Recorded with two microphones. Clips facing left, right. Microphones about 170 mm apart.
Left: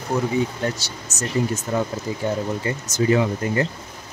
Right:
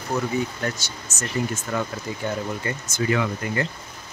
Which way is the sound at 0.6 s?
30° left (ahead or behind).